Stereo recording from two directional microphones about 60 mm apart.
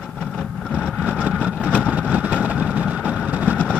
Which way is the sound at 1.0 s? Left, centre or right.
Right.